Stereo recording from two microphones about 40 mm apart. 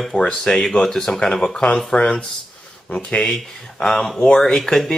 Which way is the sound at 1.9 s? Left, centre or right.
Left.